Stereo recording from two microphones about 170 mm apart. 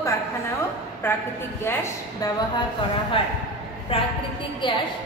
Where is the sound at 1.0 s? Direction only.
15° left (ahead or behind).